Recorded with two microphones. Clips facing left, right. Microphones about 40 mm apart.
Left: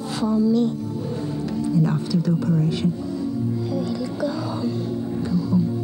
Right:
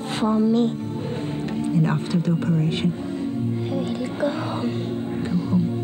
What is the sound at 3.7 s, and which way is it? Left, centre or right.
Music, right.